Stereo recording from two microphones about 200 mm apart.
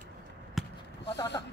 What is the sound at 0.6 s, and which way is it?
Basketball bounce, centre (ahead or behind).